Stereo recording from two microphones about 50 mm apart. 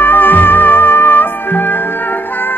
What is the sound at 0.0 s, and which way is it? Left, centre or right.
Music, left.